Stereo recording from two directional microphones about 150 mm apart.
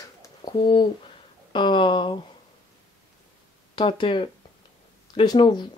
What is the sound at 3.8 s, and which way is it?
Speech, 35° left (ahead or behind).